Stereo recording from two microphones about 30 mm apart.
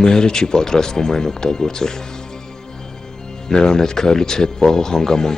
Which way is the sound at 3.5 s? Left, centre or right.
Left.